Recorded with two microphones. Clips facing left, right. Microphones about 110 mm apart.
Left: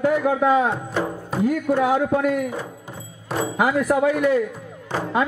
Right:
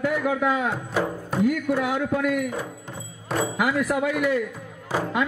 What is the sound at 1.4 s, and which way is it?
A man's voice, 35° left (ahead or behind).